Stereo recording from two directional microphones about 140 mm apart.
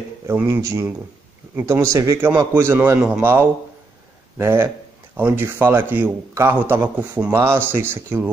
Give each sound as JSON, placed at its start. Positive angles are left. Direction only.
{"t": 0.3, "sound": "a man's voice", "side_deg": -15}